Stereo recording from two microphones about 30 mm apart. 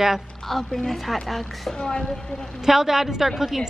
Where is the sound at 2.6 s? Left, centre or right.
Centre.